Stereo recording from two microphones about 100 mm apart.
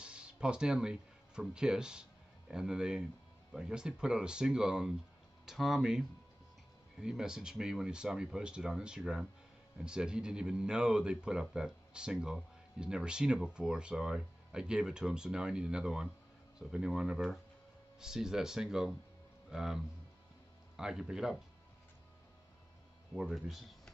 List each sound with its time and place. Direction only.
0.0 s speech: 10° right (ahead or behind)
23.1 s speech: 5° right (ahead or behind)